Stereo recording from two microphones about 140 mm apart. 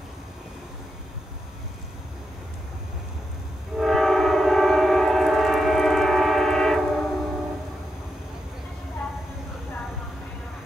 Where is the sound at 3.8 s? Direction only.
Centre (ahead or behind).